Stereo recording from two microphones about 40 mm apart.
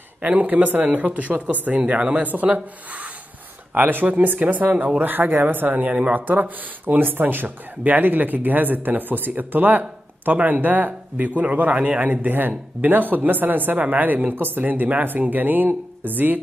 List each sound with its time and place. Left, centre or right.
0.2 s speech: right
1.9 s speech: right
3.7 s speech: right
5.0 s speech: right
5.7 s speech: right
6.2 s speech: right
11.4 s a man's voice: right
12.0 s speech: right